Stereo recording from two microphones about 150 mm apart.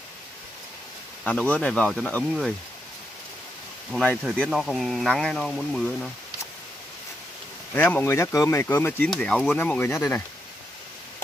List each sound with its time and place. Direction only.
1.2 s speech: 10° left (ahead or behind)
3.9 s speech: 10° left (ahead or behind)
7.7 s speech: 10° left (ahead or behind)
9.1 s speech: 5° left (ahead or behind)
9.6 s speech: 15° left (ahead or behind)